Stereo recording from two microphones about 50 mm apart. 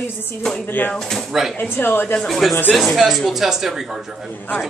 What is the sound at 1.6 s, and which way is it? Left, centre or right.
Speech, left.